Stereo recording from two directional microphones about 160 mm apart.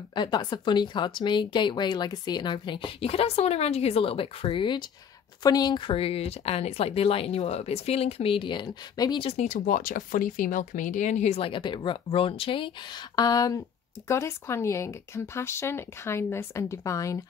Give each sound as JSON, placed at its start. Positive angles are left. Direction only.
{"t": 0.1, "sound": "speech", "side_deg": 25}
{"t": 9.4, "sound": "speech", "side_deg": 55}